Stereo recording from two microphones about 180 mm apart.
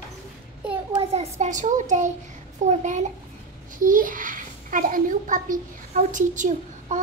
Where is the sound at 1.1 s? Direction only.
40° right (ahead or behind).